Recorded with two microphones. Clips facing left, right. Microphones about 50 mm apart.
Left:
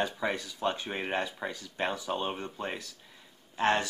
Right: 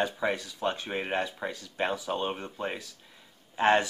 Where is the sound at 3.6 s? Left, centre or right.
Centre.